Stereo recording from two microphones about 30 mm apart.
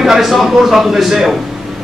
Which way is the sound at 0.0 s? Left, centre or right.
Centre.